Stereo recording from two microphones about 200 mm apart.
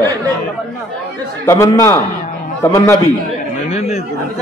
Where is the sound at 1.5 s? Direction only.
15° left (ahead or behind).